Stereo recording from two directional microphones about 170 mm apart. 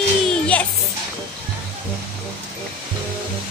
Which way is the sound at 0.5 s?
10° left (ahead or behind).